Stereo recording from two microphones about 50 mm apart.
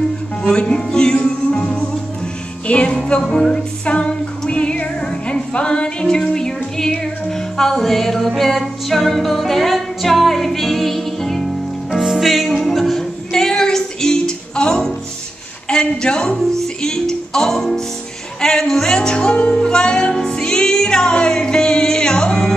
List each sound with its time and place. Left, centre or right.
0.4 s music: centre
15.7 s a woman's voice: centre
16.8 s music: centre